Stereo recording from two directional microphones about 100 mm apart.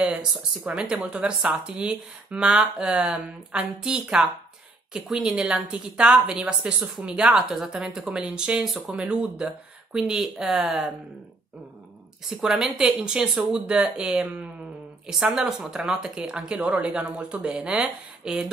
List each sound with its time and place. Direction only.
0.0 s a woman's voice: 10° right (ahead or behind)
12.3 s a woman's voice: 5° right (ahead or behind)